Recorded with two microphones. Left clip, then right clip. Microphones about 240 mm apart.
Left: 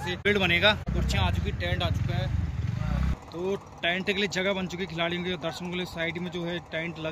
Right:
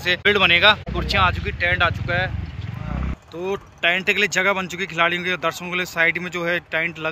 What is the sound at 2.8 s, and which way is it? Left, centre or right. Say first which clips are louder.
Vehicle: right 4 dB; centre.